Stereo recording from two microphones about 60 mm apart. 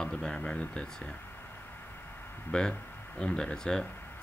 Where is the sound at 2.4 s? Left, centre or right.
Centre.